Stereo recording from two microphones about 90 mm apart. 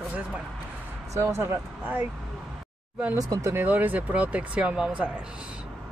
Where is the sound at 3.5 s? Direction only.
20° right (ahead or behind).